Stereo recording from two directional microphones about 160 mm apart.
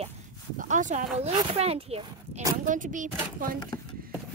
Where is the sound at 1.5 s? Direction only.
40° right (ahead or behind).